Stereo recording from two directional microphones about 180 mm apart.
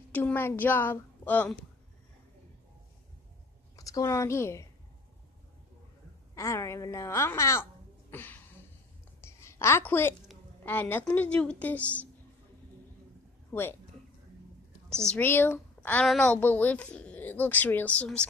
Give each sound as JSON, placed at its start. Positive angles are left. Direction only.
{"t": 0.1, "sound": "a woman's voice", "side_deg": 10}
{"t": 3.7, "sound": "a woman's voice", "side_deg": 20}
{"t": 6.3, "sound": "a woman's voice", "side_deg": 15}
{"t": 8.1, "sound": "a sound", "side_deg": 10}
{"t": 10.6, "sound": "a woman's voice", "side_deg": 10}
{"t": 13.5, "sound": "speech", "side_deg": 10}
{"t": 15.0, "sound": "a woman's voice", "side_deg": 10}